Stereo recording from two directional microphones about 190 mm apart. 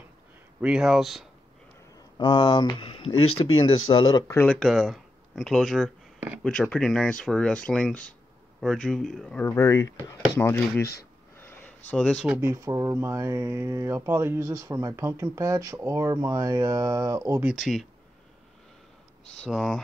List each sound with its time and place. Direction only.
0.6 s speech: 5° right (ahead or behind)
2.1 s speech: 25° left (ahead or behind); by 6.4 s 5° right (ahead or behind)
6.4 s speech: 5° left (ahead or behind)
9.5 s speech: 15° left (ahead or behind)
10.8 s speech: 55° left (ahead or behind)
11.3 s a sound: 10° left (ahead or behind)
12.4 s speech: 15° right (ahead or behind)
19.4 s speech: 5° left (ahead or behind)